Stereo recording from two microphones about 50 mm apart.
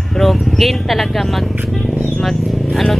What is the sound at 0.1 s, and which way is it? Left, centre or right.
Vehicle, centre.